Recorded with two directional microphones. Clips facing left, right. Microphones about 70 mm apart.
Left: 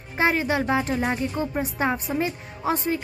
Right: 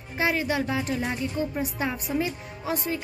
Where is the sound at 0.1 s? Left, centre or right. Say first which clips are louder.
Left 3 dB; left.